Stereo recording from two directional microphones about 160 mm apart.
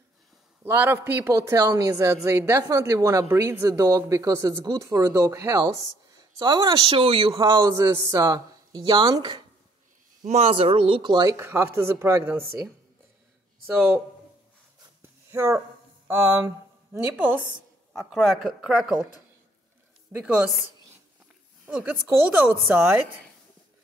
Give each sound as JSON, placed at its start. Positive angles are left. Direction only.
{"t": 0.7, "sound": "speech", "side_deg": -15}
{"t": 10.2, "sound": "speech", "side_deg": -45}
{"t": 13.7, "sound": "speech", "side_deg": -10}
{"t": 15.0, "sound": "a sound", "side_deg": -15}
{"t": 16.1, "sound": "speech", "side_deg": -15}
{"t": 20.1, "sound": "speech", "side_deg": -10}
{"t": 21.6, "sound": "speech", "side_deg": -10}